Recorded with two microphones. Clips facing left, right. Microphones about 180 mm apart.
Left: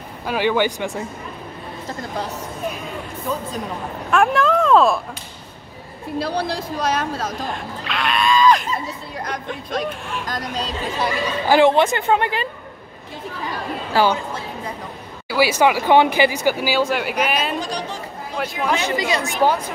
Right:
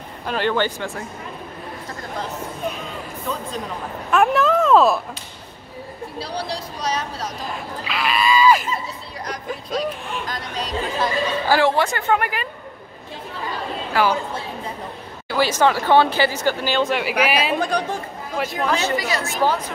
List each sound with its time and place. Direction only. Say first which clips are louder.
0.3 s speech: left 2 dB; 10° left (ahead or behind)
4.1 s speech: even; 5° right (ahead or behind)
6.1 s speech: left 6 dB; 55° left (ahead or behind)
7.5 s screaming: left 1 dB; 5° right (ahead or behind)
9.5 s speech: right 3 dB; centre (ahead or behind)
11.0 s speech: even; 20° left (ahead or behind)
13.9 s speech: left 2 dB; 30° left (ahead or behind)
15.2 s speech: left 2 dB; 10° left (ahead or behind)
16.8 s speech: right 1 dB; centre (ahead or behind)
17.6 s speech: right 4 dB; 55° right (ahead or behind)
18.4 s speech: right 1 dB; centre (ahead or behind)
18.8 s speech: left 1 dB; 20° left (ahead or behind)